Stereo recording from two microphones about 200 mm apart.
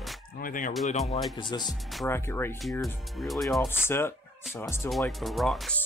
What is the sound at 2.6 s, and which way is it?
Speech, centre (ahead or behind).